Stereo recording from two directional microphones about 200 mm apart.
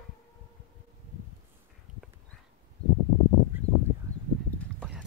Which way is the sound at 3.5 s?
10° right (ahead or behind).